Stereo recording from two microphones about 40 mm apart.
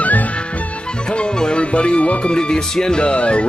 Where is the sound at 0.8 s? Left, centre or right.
Left.